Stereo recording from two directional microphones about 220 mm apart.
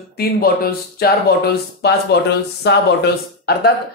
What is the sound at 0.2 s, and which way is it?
Speech, 40° left (ahead or behind).